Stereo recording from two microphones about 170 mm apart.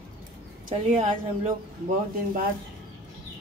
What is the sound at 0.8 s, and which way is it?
Speech, 45° right (ahead or behind).